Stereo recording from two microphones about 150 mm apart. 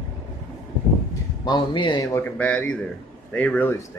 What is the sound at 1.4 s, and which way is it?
Speech, 30° left (ahead or behind).